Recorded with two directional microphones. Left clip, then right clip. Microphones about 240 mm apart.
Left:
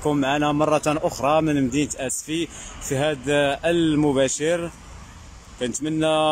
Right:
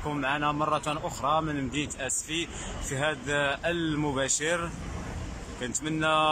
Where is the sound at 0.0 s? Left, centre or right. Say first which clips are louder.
Left 7 dB; left.